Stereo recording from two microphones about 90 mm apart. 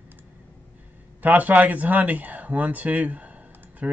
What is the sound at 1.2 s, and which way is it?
Speech, 20° right (ahead or behind).